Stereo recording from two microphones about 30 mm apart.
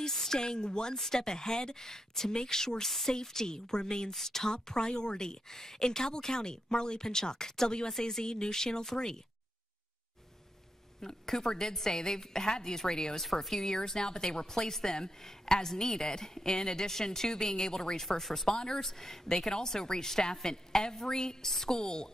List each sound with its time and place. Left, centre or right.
0.1 s a sound: centre
0.4 s a woman's voice: left
0.9 s a woman's voice: centre
4.1 s speech: centre
4.5 s a woman's voice: left
11.0 s a woman's voice: centre
13.2 s speech: centre
13.6 s a woman's voice: centre